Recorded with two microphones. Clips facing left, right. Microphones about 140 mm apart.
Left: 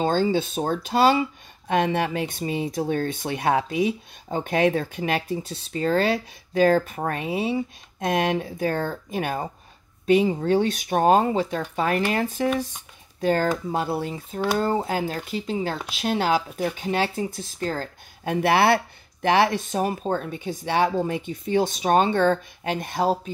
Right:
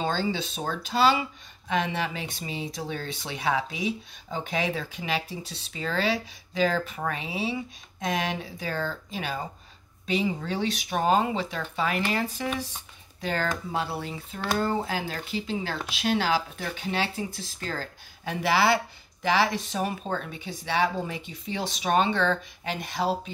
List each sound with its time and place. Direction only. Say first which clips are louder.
0.0 s speech: left 6 dB; 50° left (ahead or behind)